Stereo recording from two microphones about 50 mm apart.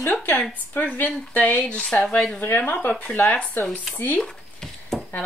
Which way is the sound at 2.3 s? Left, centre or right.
Left.